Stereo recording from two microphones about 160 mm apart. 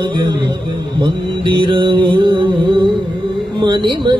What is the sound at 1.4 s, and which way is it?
Music, 30° right (ahead or behind).